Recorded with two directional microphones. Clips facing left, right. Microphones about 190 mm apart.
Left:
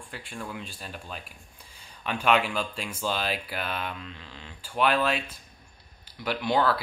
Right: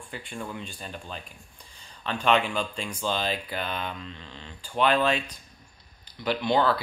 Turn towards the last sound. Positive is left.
turn(degrees=5)  # may be behind; listen again after turning